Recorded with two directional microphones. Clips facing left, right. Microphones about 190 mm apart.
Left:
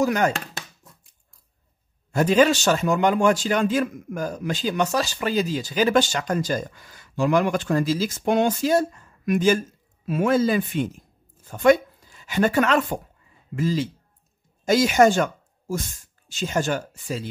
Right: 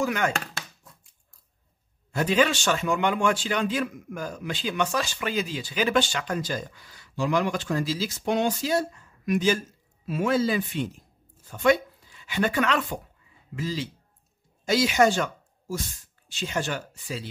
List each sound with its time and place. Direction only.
0.0 s speech: 40° left (ahead or behind)
2.1 s a man's voice: 45° left (ahead or behind)